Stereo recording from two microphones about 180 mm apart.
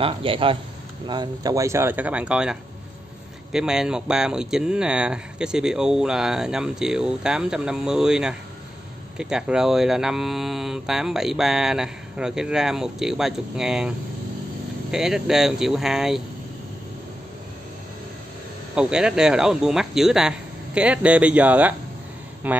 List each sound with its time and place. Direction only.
0.0 s speech: 30° right (ahead or behind); by 16.2 s 5° right (ahead or behind)
18.8 s speech: 5° right (ahead or behind)